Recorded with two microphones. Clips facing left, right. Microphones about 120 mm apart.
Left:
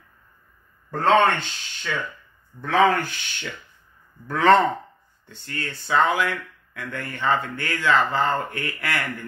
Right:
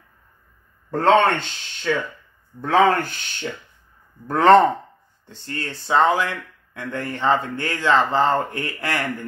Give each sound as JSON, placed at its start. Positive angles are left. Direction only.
{"t": 0.9, "sound": "speech", "side_deg": -40}